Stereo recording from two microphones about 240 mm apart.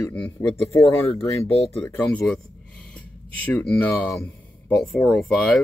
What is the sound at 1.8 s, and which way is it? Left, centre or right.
Speech, centre.